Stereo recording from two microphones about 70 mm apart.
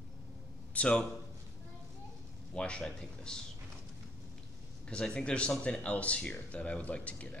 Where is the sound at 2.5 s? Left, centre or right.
Centre.